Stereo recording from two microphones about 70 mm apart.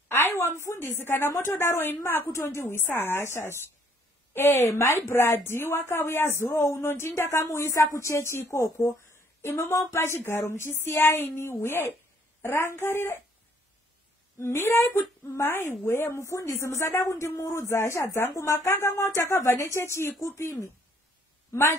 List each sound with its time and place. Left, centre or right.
0.1 s a woman's voice: left
14.4 s a woman's voice: left
21.5 s a woman's voice: left